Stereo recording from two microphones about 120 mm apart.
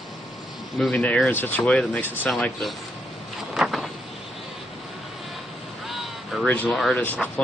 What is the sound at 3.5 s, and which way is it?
Vehicle, centre (ahead or behind).